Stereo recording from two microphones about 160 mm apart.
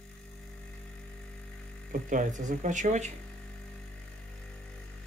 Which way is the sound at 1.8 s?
55° right (ahead or behind).